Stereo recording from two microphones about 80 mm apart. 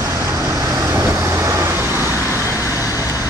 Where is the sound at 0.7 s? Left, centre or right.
Right.